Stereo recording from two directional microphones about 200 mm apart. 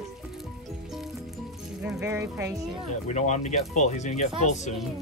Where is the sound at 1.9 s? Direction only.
15° right (ahead or behind).